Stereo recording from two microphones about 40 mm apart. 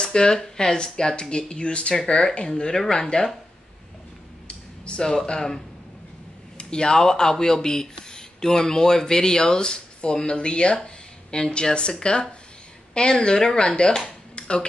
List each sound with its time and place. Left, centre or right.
0.0 s speech: centre
4.5 s speech: left
6.6 s speech: left
14.0 s a sound: left